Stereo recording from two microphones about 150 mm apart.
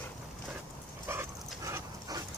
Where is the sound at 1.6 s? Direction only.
20° right (ahead or behind).